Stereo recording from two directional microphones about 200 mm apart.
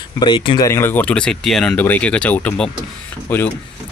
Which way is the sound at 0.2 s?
25° left (ahead or behind).